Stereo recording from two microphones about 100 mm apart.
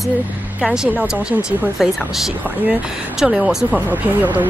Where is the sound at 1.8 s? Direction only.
Centre (ahead or behind).